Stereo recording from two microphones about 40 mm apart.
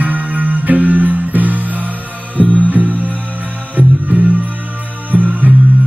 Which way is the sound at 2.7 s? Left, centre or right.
Right.